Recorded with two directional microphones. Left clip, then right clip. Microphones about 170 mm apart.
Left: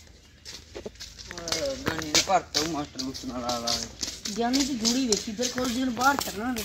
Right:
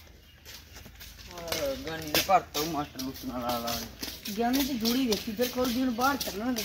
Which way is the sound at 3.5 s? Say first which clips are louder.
Left 5 dB; centre (ahead or behind).